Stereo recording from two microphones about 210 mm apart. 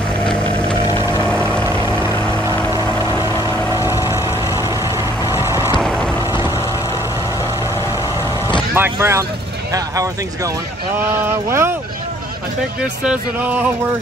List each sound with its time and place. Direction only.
1.7 s vehicle: 10° right (ahead or behind)
3.4 s vehicle: 15° right (ahead or behind)
5.2 s vehicle: 10° right (ahead or behind)
5.8 s vehicle: 5° left (ahead or behind)
8.7 s speech: 10° right (ahead or behind)
13.0 s speech: 5° right (ahead or behind)